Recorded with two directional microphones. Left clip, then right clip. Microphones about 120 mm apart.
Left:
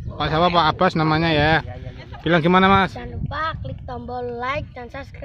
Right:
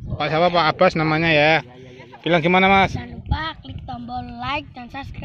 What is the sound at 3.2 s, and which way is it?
Quack, 30° left (ahead or behind).